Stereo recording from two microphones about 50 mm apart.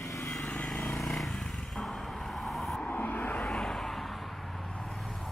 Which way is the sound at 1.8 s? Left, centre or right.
Centre.